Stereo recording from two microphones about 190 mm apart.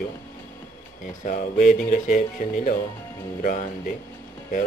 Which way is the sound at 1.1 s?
45° left (ahead or behind).